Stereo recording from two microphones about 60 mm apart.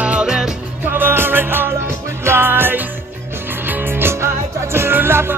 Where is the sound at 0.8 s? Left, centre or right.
Right.